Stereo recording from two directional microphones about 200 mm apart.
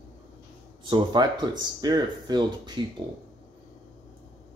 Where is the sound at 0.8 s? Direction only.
20° right (ahead or behind).